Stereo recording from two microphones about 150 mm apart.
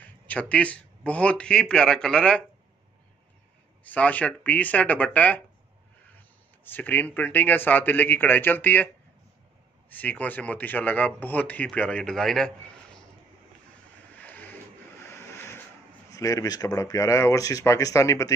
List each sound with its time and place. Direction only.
0.0 s speech: 10° left (ahead or behind)
3.8 s speech: 10° left (ahead or behind)
6.6 s speech: 10° left (ahead or behind)
9.8 s speech: 10° left (ahead or behind)
14.1 s boat: 10° left (ahead or behind)
15.0 s vehicle: 15° left (ahead or behind)
16.1 s speech: 20° left (ahead or behind)